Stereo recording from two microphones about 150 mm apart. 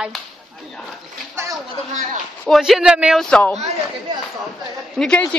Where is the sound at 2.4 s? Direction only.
Centre (ahead or behind).